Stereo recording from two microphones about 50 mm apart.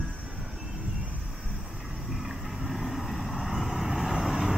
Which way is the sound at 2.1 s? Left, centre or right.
Centre.